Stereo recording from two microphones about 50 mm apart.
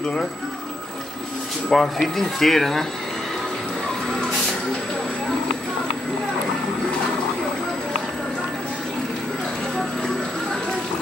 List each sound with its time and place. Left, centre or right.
1.7 s speech: centre